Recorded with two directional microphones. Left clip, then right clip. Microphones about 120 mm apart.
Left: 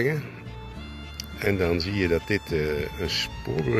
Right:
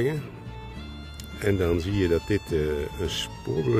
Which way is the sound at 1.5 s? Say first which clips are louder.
Even; 45° right (ahead or behind).